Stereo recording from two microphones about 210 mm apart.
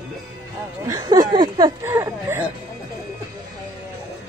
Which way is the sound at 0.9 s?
20° right (ahead or behind).